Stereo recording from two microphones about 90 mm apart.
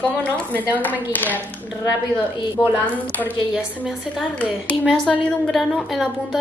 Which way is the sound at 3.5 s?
10° right (ahead or behind).